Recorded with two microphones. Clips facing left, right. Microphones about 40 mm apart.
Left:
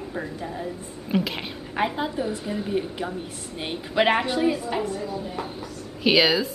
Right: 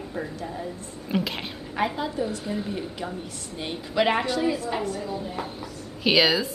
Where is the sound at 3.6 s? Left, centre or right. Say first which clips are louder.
Left 2 dB; left.